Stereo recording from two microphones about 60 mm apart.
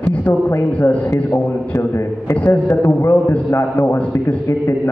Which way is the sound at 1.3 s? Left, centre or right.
Left.